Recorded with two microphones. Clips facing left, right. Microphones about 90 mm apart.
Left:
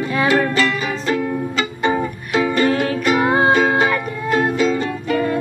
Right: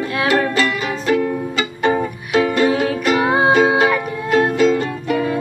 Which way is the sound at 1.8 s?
10° right (ahead or behind).